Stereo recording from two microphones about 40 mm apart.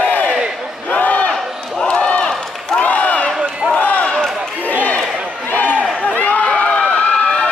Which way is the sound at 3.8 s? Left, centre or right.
Left.